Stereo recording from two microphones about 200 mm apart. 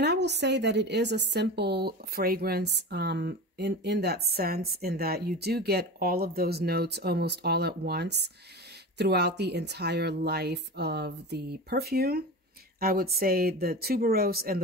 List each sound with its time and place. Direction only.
0.0 s a woman's voice: 55° right (ahead or behind)